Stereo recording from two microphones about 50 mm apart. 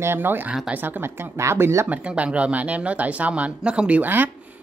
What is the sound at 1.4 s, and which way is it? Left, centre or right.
Speech, right.